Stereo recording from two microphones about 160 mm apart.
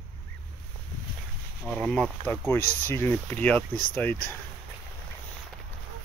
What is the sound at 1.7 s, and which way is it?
Speech, 5° left (ahead or behind).